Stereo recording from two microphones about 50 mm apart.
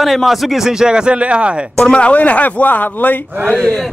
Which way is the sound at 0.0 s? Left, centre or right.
Centre.